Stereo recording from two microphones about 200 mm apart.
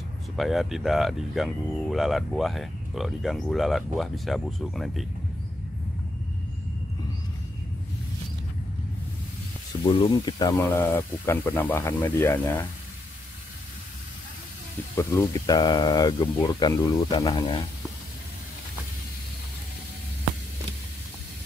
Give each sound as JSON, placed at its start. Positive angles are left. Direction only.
{"t": 0.4, "sound": "speech", "side_deg": 0}
{"t": 9.8, "sound": "speech", "side_deg": 25}
{"t": 10.6, "sound": "speech", "side_deg": 10}
{"t": 15.0, "sound": "speech", "side_deg": 15}